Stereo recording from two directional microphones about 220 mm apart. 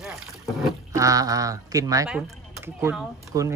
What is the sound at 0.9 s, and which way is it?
Speech, 15° right (ahead or behind).